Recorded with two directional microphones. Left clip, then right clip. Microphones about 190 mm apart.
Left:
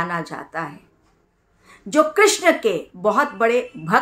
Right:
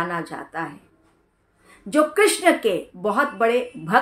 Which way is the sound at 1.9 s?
15° left (ahead or behind).